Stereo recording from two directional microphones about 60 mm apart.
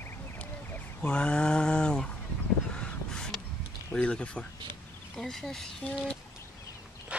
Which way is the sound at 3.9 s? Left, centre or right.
Centre.